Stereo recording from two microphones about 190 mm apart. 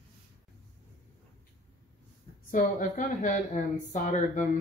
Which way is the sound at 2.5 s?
45° left (ahead or behind).